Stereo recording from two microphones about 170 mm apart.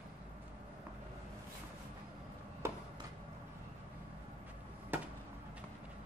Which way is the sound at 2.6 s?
15° right (ahead or behind).